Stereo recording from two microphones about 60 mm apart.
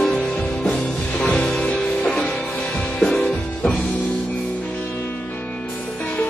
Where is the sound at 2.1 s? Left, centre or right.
Centre.